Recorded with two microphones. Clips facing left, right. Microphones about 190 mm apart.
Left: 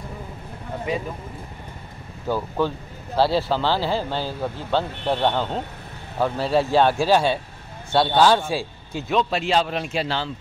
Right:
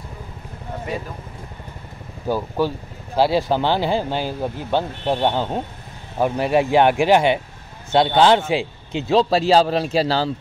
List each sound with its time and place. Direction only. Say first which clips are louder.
2.2 s a man's voice: right 2 dB; 10° right (ahead or behind); by 10.3 s 35° right (ahead or behind)